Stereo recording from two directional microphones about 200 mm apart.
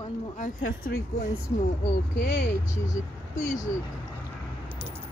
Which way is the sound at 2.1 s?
50° left (ahead or behind).